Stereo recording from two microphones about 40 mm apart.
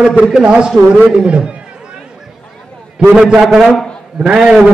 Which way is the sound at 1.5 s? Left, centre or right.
Right.